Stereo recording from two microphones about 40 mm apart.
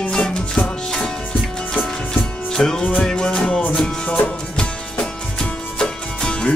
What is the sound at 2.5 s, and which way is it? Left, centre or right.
Music, centre.